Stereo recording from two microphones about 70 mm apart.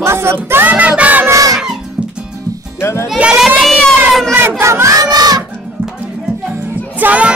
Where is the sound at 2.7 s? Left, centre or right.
Left.